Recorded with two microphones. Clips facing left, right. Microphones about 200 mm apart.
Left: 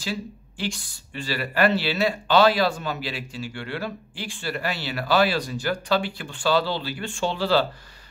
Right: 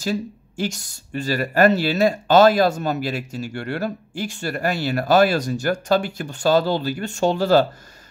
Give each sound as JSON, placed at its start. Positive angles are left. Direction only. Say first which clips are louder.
{"t": 0.0, "sound": "speech", "louder": "right 6 dB", "side_deg": -45}